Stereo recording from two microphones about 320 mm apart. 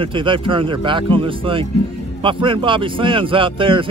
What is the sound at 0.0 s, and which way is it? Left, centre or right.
Speech, centre.